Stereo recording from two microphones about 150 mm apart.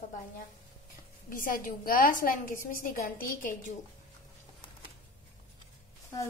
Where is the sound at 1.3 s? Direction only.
65° left (ahead or behind).